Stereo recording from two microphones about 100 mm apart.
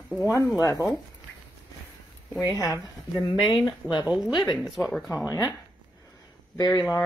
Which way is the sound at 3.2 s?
40° left (ahead or behind).